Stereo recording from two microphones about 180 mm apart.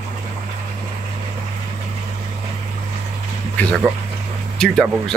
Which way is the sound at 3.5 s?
5° left (ahead or behind).